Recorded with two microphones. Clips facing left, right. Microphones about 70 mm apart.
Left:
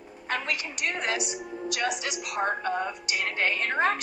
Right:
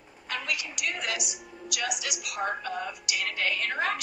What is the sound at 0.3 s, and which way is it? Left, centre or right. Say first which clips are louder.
A woman's voice: left 3 dB; left.